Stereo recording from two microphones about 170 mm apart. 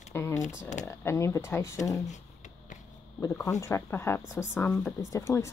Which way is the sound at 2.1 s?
45° left (ahead or behind).